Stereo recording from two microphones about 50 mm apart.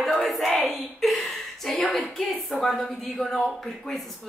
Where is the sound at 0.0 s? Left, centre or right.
Centre.